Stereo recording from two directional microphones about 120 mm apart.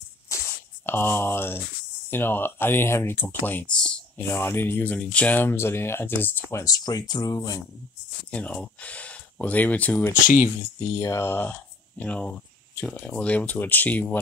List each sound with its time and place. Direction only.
0.8 s speech: 20° left (ahead or behind)
4.3 s speech: 20° left (ahead or behind)
6.5 s speech: 30° left (ahead or behind)
8.3 s speech: 10° left (ahead or behind)
10.2 s speech: 90° left
11.0 s speech: 20° left (ahead or behind)